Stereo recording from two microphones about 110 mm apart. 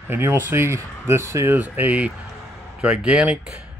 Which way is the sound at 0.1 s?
20° right (ahead or behind).